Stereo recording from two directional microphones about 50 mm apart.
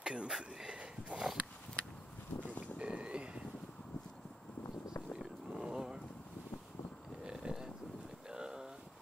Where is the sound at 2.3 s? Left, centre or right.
Left.